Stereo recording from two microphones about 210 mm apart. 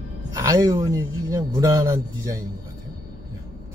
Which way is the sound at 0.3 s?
15° right (ahead or behind).